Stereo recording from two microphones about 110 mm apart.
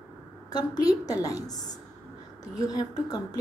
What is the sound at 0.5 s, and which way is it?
A woman's voice, 35° left (ahead or behind).